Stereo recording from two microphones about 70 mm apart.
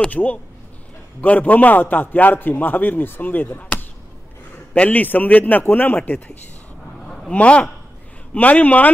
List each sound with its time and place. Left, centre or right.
0.1 s a man's voice: left
7.3 s a man's voice: centre